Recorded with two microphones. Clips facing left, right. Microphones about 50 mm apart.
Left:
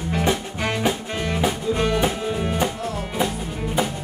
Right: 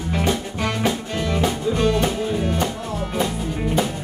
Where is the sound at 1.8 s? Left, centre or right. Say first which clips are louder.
Right 2 dB; left.